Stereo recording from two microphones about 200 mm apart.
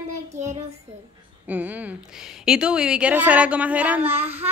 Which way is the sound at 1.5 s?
10° right (ahead or behind).